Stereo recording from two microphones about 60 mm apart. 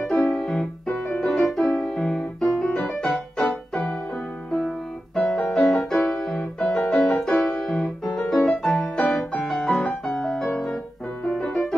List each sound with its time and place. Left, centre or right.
0.2 s piano: centre
1.2 s music: centre
1.7 s piano: centre
4.6 s music: centre
7.2 s music: centre